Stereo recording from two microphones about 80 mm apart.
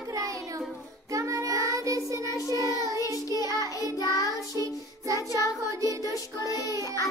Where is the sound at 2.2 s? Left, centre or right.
Left.